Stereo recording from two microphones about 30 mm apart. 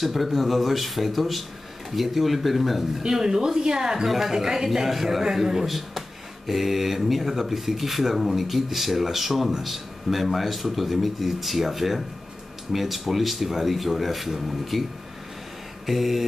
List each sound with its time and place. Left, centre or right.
0.0 s a man's voice: centre
3.0 s a man's voice: centre
15.9 s a man's voice: centre